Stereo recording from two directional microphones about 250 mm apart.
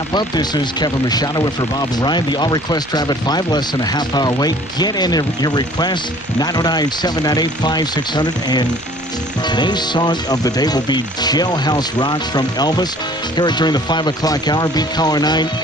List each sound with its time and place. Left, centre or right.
0.1 s speech: centre